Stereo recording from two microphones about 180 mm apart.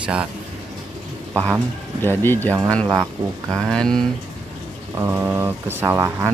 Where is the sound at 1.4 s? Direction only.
10° left (ahead or behind).